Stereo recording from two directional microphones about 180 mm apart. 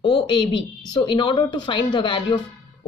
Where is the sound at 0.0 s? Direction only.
25° left (ahead or behind).